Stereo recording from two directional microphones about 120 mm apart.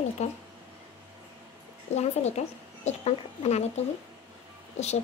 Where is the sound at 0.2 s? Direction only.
65° left (ahead or behind).